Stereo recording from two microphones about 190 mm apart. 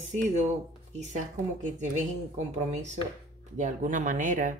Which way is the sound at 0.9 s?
40° right (ahead or behind).